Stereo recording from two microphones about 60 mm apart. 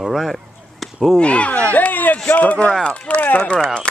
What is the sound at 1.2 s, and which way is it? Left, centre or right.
Speech, left.